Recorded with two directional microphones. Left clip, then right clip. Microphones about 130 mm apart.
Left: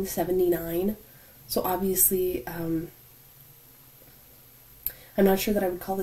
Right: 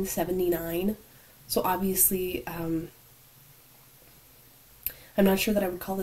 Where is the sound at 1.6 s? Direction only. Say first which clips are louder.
Left 1 dB; 20° right (ahead or behind).